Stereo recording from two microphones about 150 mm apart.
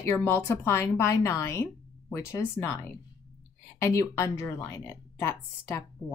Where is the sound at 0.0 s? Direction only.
15° left (ahead or behind).